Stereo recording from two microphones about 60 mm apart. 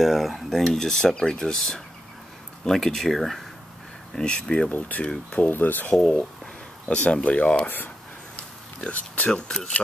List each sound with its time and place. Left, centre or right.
0.0 s speech: centre
4.1 s speech: centre
4.6 s speech: left
5.9 s a sound: centre
7.2 s speech: centre
7.6 s speech: left
8.9 s speech: left
9.3 s speech: centre